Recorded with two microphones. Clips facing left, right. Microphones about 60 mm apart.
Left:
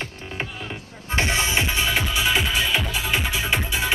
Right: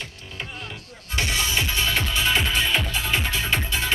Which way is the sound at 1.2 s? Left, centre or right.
Left.